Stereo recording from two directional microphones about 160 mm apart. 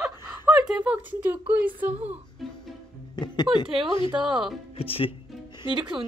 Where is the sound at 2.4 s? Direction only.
Centre (ahead or behind).